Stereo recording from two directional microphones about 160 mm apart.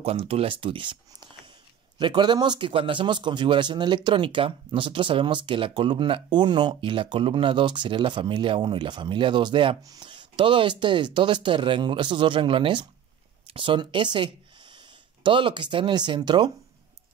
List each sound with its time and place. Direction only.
0.0 s a man's voice: 40° right (ahead or behind)